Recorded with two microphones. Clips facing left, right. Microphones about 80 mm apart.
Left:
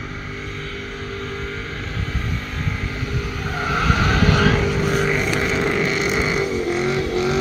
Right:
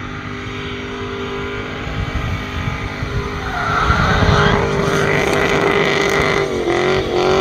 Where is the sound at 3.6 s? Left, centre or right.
Right.